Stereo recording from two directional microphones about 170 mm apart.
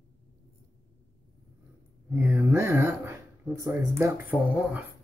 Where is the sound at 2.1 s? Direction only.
15° right (ahead or behind).